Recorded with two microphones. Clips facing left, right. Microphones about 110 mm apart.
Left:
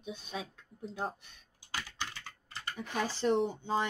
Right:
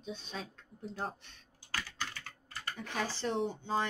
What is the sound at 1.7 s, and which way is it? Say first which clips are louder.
Typing: even; 20° left (ahead or behind).